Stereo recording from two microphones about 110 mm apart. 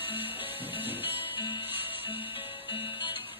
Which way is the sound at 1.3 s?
50° left (ahead or behind).